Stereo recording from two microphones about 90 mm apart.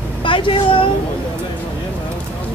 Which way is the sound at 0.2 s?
70° left (ahead or behind).